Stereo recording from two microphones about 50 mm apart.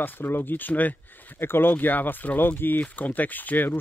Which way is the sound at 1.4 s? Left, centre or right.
Left.